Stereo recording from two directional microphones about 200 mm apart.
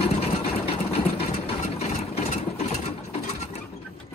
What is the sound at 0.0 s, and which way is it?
Vehicle, 30° left (ahead or behind).